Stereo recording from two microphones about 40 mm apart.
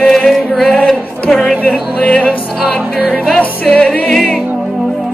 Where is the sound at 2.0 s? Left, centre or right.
Left.